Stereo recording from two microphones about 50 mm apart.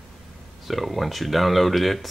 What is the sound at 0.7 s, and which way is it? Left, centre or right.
Speech, centre.